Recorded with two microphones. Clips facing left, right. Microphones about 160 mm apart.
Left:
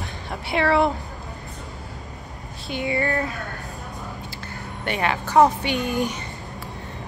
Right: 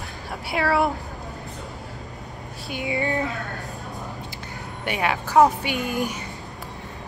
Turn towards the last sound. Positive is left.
turn(degrees=-5)  # may be behind; listen again after turning